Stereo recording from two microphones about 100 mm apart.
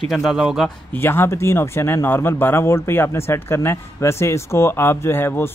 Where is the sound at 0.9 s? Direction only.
20° left (ahead or behind).